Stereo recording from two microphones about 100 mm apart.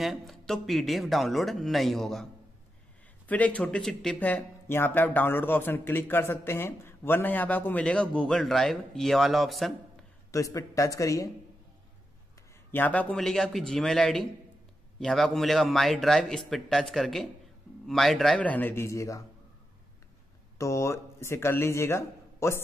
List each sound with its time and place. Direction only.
0.0 s a man's voice: centre (ahead or behind)
3.3 s speech: 15° left (ahead or behind)
10.3 s speech: 35° left (ahead or behind)
12.7 s speech: 15° left (ahead or behind)
13.2 s a man's voice: 5° left (ahead or behind)
18.4 s speech: 15° left (ahead or behind)
20.5 s speech: 30° left (ahead or behind)